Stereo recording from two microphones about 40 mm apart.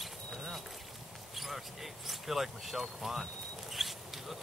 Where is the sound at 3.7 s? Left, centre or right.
Centre.